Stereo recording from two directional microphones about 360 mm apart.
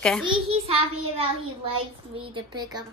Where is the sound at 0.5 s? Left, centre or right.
Centre.